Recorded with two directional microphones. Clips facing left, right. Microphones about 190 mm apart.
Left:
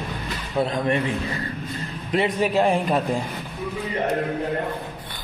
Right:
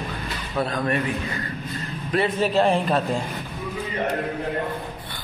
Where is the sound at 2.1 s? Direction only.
15° left (ahead or behind).